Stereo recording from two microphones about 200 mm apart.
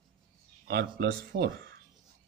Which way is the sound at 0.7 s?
55° right (ahead or behind).